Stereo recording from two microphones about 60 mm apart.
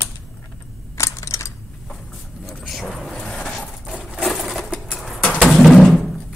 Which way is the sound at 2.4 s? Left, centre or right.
Centre.